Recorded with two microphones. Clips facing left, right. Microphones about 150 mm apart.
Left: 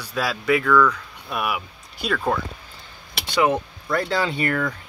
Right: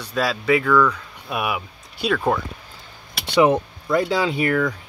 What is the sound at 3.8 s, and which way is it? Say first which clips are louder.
Speech: right 3 dB; 10° right (ahead or behind).